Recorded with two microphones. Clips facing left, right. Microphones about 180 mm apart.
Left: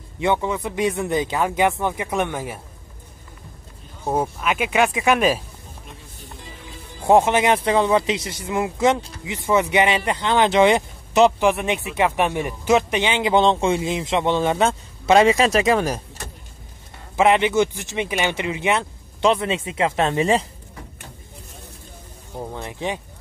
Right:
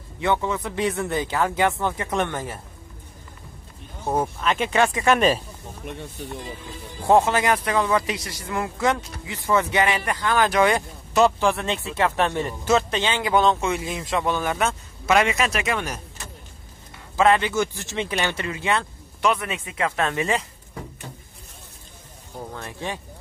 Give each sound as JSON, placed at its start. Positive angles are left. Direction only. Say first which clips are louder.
{"t": 0.2, "sound": "speech", "louder": "left 2 dB", "side_deg": 15}
{"t": 4.0, "sound": "speech", "louder": "left 1 dB", "side_deg": 10}
{"t": 7.1, "sound": "speech", "louder": "left 3 dB", "side_deg": 20}
{"t": 17.2, "sound": "speech", "louder": "left 3 dB", "side_deg": 20}
{"t": 22.4, "sound": "speech", "louder": "left 4 dB", "side_deg": 20}